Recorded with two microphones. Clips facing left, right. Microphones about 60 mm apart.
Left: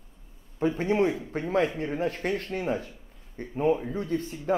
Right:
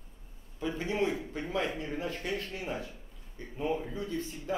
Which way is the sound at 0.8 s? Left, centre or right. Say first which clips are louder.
Left 5 dB; left.